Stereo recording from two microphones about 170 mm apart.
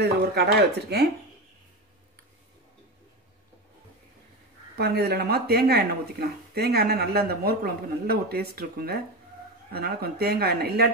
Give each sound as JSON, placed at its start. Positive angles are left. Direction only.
{"t": 0.0, "sound": "speech", "side_deg": -70}
{"t": 4.7, "sound": "speech", "side_deg": -70}